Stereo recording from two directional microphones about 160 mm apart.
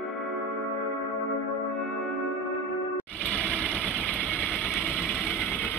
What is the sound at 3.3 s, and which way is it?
Engine, 5° left (ahead or behind).